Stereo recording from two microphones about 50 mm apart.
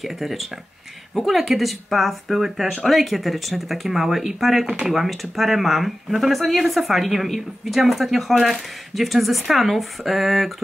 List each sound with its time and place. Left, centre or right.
0.0 s speech: centre
4.6 s speech: right
4.9 s speech: centre